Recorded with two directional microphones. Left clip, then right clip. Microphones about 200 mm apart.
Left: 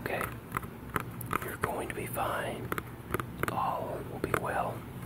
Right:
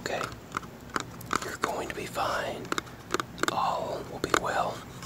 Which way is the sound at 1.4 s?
Centre (ahead or behind).